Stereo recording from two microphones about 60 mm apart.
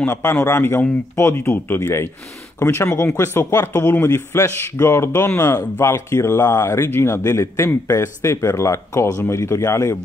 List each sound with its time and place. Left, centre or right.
0.0 s a man's voice: left